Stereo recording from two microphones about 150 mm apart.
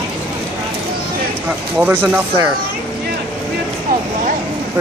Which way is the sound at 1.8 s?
10° right (ahead or behind).